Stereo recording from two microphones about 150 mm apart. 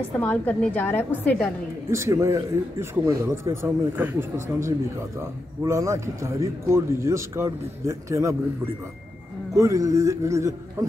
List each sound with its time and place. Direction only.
0.2 s a woman's voice: 10° left (ahead or behind)
1.9 s speech: 20° right (ahead or behind)
9.6 s speech: 20° right (ahead or behind)